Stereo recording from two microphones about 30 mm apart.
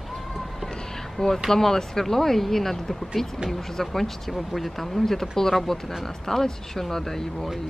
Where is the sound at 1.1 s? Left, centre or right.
Centre.